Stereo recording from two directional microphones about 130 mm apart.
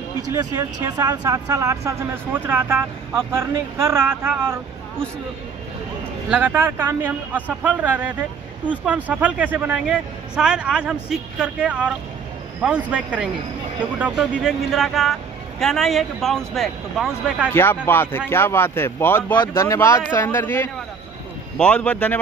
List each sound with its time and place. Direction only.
0.2 s speech: 25° right (ahead or behind)
6.3 s a man's voice: 15° right (ahead or behind)
17.5 s speech: 15° left (ahead or behind)
21.5 s speech: 10° left (ahead or behind)